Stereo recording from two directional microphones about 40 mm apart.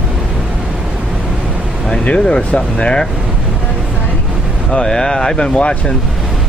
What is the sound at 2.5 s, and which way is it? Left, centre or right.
Speech, left.